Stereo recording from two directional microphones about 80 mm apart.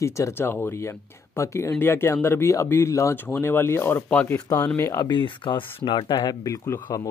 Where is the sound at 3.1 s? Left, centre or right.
Left.